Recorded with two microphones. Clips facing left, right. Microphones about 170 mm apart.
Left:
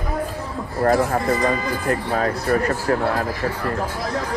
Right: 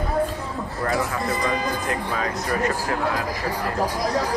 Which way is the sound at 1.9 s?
45° left (ahead or behind).